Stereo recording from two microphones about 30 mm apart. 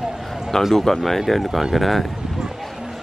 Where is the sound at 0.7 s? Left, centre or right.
Centre.